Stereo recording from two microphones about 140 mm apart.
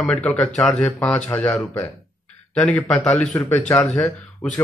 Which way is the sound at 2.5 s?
5° left (ahead or behind).